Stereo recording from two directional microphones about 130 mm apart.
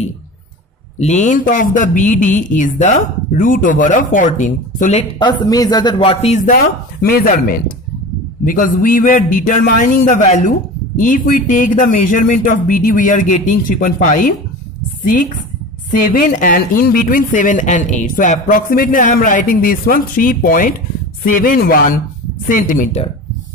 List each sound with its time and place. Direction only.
0.9 s speech: 65° left (ahead or behind)
3.3 s speech: 90° left
5.2 s speech: 35° left (ahead or behind)
6.0 s speech: 50° left (ahead or behind)
7.2 s speech: 90° left
11.0 s speech: 90° left
16.1 s speech: 90° left